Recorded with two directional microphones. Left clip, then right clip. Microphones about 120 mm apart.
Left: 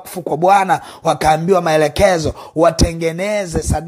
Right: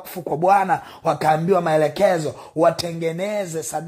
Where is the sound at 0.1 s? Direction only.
30° left (ahead or behind).